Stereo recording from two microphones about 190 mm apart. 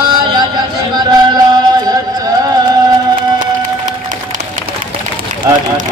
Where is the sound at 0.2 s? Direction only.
20° right (ahead or behind).